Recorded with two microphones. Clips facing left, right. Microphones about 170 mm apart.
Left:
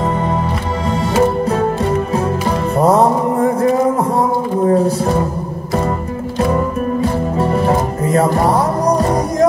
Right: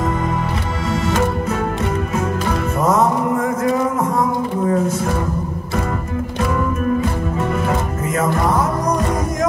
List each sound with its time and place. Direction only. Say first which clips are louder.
2.8 s mantra: left 5 dB; 35° left (ahead or behind)
6.4 s music: left 4 dB; 35° left (ahead or behind)